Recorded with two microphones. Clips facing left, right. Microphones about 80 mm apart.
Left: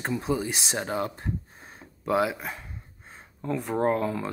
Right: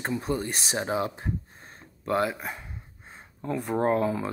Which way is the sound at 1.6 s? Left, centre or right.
Centre.